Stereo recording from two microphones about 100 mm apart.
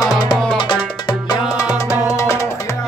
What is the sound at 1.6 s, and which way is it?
Music, 35° left (ahead or behind).